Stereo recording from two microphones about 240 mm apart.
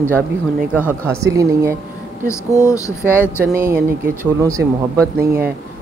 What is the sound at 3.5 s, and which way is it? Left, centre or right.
Speech, centre.